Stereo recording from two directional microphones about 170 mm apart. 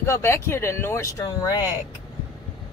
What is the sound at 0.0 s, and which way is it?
Speech, 15° left (ahead or behind).